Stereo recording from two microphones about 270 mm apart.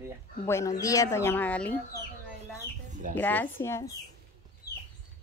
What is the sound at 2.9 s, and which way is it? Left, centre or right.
Bird, right.